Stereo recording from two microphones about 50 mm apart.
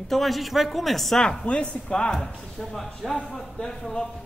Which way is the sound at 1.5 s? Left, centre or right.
Left.